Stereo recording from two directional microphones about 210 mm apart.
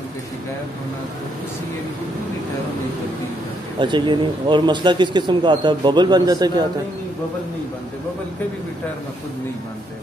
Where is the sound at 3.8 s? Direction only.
20° right (ahead or behind).